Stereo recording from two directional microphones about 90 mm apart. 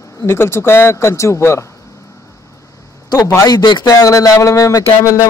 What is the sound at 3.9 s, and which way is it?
Speech, 40° left (ahead or behind).